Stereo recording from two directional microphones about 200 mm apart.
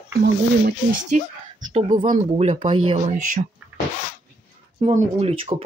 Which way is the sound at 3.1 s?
40° right (ahead or behind).